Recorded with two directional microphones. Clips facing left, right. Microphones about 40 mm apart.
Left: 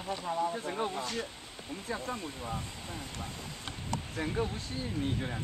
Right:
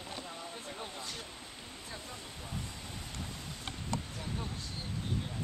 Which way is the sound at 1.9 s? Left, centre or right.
Left.